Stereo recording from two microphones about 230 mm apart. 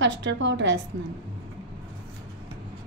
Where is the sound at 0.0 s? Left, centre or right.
Right.